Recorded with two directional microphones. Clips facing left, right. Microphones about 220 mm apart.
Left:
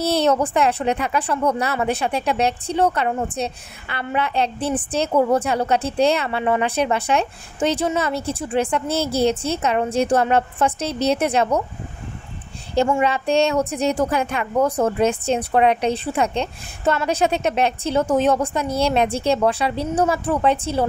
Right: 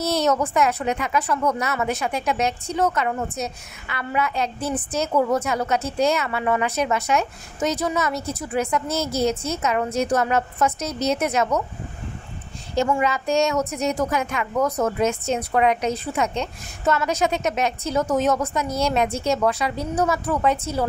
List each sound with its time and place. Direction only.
0.0 s speech: 30° left (ahead or behind)
12.7 s speech: 30° left (ahead or behind)